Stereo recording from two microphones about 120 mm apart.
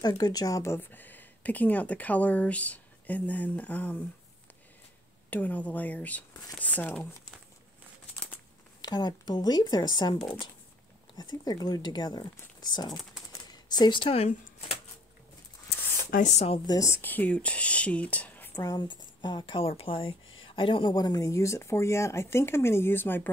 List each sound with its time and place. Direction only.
0.0 s speech: 35° left (ahead or behind); by 4.0 s 15° left (ahead or behind)
5.3 s speech: 15° left (ahead or behind)
8.8 s speech: 35° left (ahead or behind)
11.1 s speech: 35° left (ahead or behind); by 14.8 s 60° left (ahead or behind)
16.2 s speech: 80° left
16.6 s speech: 30° left (ahead or behind)
17.0 s speech: 15° left (ahead or behind)
18.5 s speech: 30° left (ahead or behind)
20.9 s speech: 30° left (ahead or behind)